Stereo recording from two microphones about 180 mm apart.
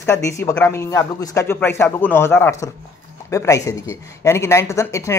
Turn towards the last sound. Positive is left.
turn(degrees=15)  # may be behind; listen again after turning